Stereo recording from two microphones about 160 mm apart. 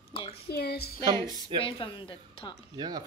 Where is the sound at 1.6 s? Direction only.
35° left (ahead or behind).